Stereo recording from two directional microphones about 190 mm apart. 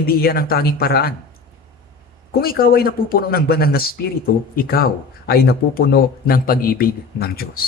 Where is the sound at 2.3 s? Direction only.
50° left (ahead or behind).